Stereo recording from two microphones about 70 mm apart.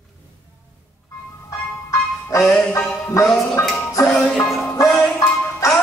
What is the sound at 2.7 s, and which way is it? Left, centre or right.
Music, left.